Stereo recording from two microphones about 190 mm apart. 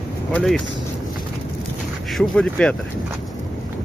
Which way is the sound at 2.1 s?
Centre (ahead or behind).